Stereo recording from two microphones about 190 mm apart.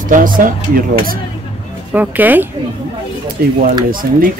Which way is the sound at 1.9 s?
10° right (ahead or behind).